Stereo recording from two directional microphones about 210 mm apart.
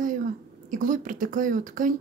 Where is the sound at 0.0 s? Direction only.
40° right (ahead or behind).